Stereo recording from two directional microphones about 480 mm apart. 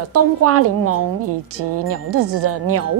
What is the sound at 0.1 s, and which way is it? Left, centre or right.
Speech, right.